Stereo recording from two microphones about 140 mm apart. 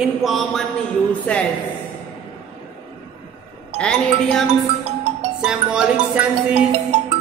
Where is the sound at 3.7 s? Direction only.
5° left (ahead or behind).